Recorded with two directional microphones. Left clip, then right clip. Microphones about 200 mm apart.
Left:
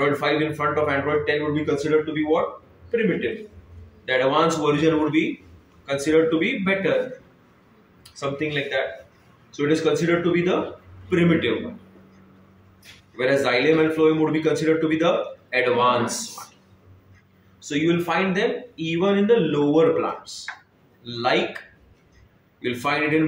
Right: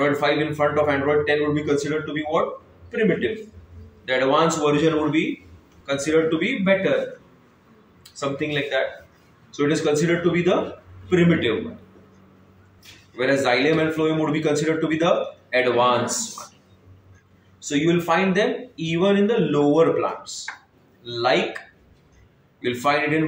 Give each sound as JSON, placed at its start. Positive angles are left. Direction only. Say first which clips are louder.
{"t": 0.0, "sound": "a man's voice", "louder": "right 1 dB", "side_deg": 0}
{"t": 4.0, "sound": "a man's voice", "louder": "even", "side_deg": 0}
{"t": 8.1, "sound": "a man's voice", "louder": "right 1 dB", "side_deg": 0}
{"t": 13.1, "sound": "a man's voice", "louder": "even", "side_deg": 0}
{"t": 17.6, "sound": "a man's voice", "louder": "right 1 dB", "side_deg": -5}
{"t": 22.6, "sound": "a man's voice", "louder": "right 2 dB", "side_deg": 0}